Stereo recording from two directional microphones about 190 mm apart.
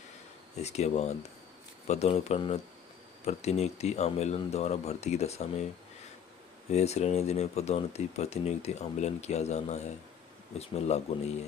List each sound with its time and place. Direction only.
0.6 s speech: 35° left (ahead or behind)
6.7 s speech: 35° left (ahead or behind)